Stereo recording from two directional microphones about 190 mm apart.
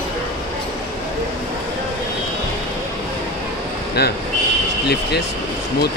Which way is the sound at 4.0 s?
60° left (ahead or behind).